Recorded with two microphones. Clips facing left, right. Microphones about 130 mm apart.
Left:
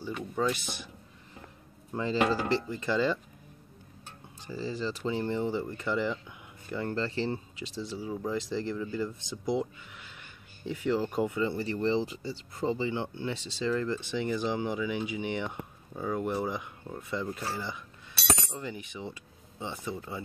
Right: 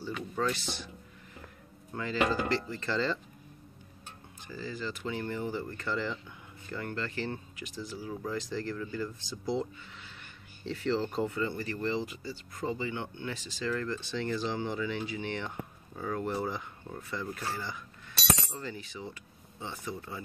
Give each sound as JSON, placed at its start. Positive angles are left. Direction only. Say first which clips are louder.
{"t": 0.4, "sound": "speech", "louder": "left 2 dB", "side_deg": 15}
{"t": 2.0, "sound": "speech", "louder": "left 2 dB", "side_deg": 30}
{"t": 4.5, "sound": "speech", "louder": "left 4 dB", "side_deg": 30}
{"t": 6.9, "sound": "speech", "louder": "left 5 dB", "side_deg": 30}